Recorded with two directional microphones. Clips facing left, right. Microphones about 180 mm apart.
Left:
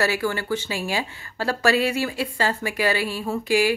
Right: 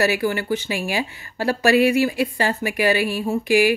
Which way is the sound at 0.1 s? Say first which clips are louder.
Right 3 dB; 15° right (ahead or behind).